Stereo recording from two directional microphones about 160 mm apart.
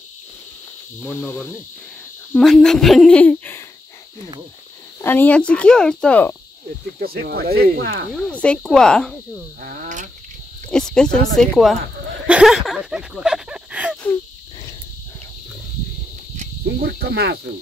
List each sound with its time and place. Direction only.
1.0 s speech: 10° left (ahead or behind)
5.0 s speech: 10° left (ahead or behind)
7.0 s speech: 85° right
8.1 s speech: 5° left (ahead or behind)
9.6 s speech: 65° right (ahead or behind)
10.7 s speech: 5° left (ahead or behind)
12.3 s a sound: 5° right (ahead or behind)
16.6 s cricket: 90° right